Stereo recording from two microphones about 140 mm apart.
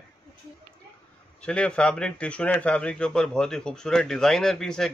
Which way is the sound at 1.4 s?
5° left (ahead or behind).